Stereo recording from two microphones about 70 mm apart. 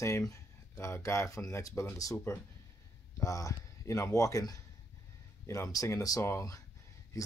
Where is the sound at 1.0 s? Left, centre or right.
Left.